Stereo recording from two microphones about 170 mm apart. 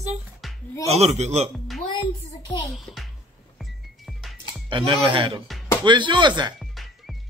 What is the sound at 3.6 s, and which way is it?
Music, centre (ahead or behind).